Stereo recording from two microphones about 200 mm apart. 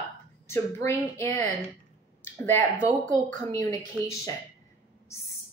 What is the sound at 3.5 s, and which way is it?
Speech, 20° left (ahead or behind).